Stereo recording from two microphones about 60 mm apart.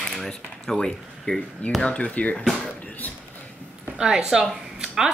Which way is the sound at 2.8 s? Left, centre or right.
Left.